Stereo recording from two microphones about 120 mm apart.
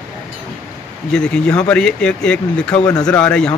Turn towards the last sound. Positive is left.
turn(degrees=10)  # may be behind; listen again after turning